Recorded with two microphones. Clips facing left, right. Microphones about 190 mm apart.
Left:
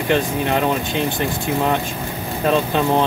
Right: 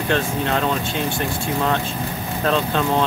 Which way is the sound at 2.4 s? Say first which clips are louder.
Left 3 dB; 15° left (ahead or behind).